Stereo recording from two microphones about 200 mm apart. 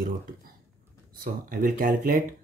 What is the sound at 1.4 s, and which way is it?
Speech, 45° right (ahead or behind).